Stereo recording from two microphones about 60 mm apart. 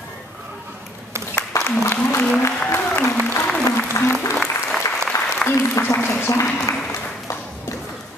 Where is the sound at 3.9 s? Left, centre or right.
Left.